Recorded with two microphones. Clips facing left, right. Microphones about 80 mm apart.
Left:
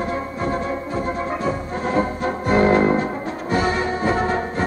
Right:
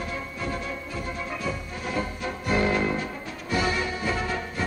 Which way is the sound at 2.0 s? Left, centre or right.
Left.